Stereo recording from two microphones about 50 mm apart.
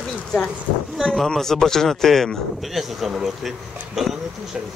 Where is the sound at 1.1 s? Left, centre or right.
Centre.